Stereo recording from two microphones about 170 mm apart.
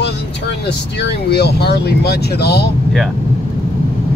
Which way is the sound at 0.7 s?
80° left.